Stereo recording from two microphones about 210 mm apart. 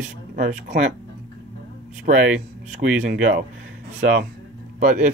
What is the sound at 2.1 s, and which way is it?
Speech, 40° right (ahead or behind).